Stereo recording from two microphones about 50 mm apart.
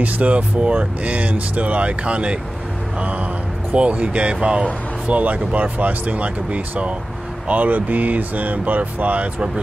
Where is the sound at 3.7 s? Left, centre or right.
Right.